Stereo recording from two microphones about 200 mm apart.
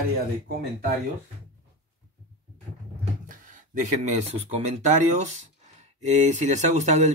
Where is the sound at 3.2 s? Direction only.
40° right (ahead or behind).